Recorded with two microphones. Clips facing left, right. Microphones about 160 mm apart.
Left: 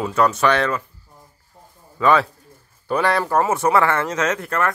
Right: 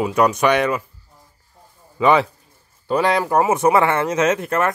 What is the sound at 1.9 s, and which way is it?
Speech, 15° right (ahead or behind).